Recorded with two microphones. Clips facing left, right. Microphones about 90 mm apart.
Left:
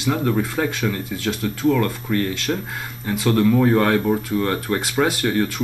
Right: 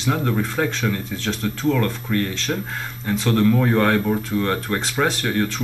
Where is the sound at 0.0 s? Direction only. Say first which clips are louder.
Left 1 dB; 5° left (ahead or behind).